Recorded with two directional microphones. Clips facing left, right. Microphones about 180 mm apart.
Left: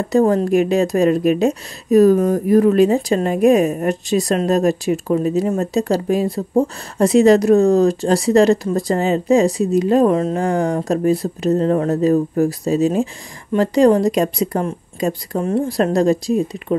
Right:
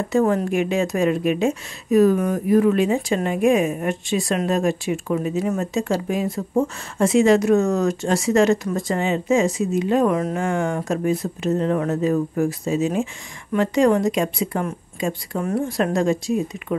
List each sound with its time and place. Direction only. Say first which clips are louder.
0.1 s a woman's voice: left 5 dB; 35° left (ahead or behind)